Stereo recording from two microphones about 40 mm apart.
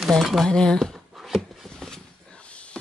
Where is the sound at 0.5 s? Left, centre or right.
Centre.